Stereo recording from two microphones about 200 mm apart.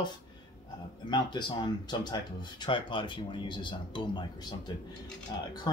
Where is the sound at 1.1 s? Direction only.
20° left (ahead or behind).